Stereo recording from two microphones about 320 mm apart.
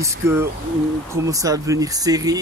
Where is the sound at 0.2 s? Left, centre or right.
Centre.